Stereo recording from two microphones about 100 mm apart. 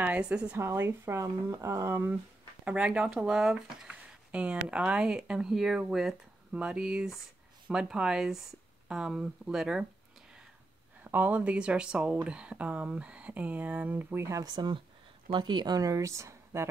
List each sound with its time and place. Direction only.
0.0 s a woman's voice: 15° right (ahead or behind)
0.6 s speech: 30° right (ahead or behind)
2.6 s speech: 10° right (ahead or behind)
11.1 s speech: 15° right (ahead or behind)
14.4 s speech: 45° right (ahead or behind); by 16.6 s 30° right (ahead or behind)